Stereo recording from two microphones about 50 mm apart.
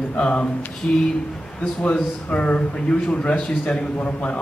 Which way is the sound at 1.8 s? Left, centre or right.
Left.